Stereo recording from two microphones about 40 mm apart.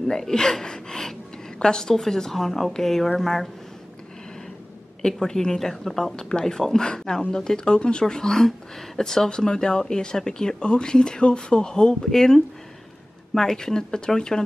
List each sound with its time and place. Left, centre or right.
0.0 s speech: centre
5.0 s speech: centre